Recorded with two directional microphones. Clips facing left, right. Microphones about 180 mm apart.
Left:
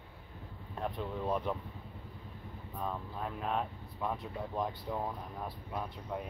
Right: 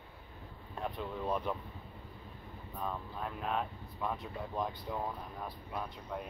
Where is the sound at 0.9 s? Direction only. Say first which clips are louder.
Left 1 dB; centre (ahead or behind).